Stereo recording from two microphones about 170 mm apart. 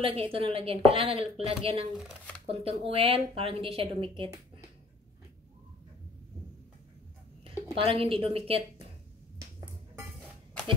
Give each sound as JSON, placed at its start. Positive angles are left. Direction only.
{"t": 0.0, "sound": "a woman's voice", "side_deg": -35}
{"t": 2.0, "sound": "speech", "side_deg": 0}
{"t": 2.4, "sound": "a woman's voice", "side_deg": -35}
{"t": 7.7, "sound": "a woman's voice", "side_deg": -35}